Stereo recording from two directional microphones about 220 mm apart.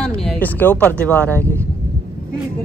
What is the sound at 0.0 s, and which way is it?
Speech, 5° left (ahead or behind).